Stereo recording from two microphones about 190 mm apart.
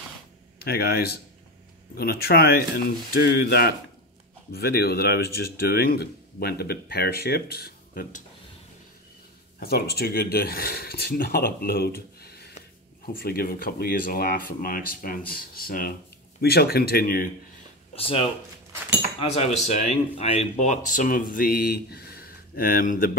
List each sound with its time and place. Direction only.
0.6 s speech: 55° left (ahead or behind)
9.6 s speech: 55° left (ahead or behind)
17.9 s speech: 30° left (ahead or behind); by 23.1 s 50° left (ahead or behind)